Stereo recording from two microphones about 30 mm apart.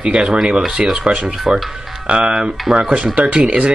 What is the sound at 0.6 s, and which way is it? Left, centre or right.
Speech, centre.